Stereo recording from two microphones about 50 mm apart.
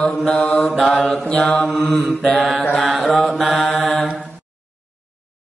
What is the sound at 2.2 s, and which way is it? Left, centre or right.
Mantra, centre.